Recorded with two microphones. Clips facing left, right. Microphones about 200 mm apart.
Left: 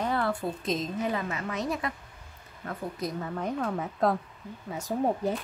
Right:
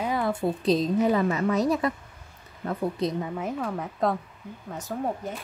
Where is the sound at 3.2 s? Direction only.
5° right (ahead or behind).